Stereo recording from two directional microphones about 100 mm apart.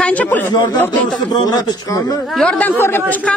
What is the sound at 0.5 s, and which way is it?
A man's voice, 45° left (ahead or behind).